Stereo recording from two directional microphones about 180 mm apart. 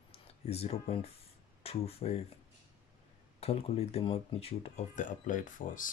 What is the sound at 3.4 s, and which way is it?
Speech, 35° left (ahead or behind).